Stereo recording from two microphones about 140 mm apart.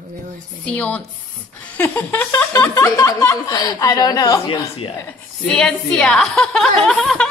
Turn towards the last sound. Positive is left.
turn(degrees=0)  # may be behind; listen again after turning